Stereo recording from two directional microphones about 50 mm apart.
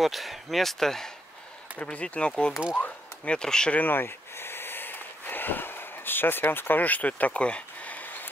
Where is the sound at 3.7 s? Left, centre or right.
Left.